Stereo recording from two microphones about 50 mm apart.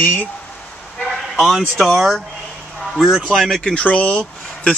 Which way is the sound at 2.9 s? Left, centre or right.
Centre.